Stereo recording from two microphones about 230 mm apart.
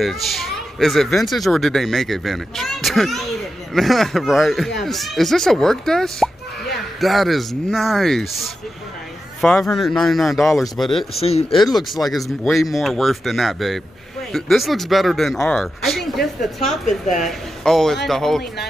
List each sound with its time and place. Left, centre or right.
0.0 s speech: centre
11.1 s speech: left
11.7 s speech: centre